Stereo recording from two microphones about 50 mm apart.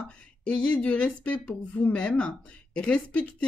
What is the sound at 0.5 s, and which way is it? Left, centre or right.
Speech, left.